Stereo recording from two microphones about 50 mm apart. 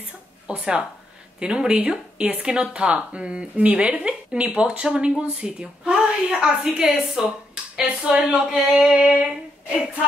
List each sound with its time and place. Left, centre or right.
0.5 s a woman's voice: centre
8.9 s a woman's voice: right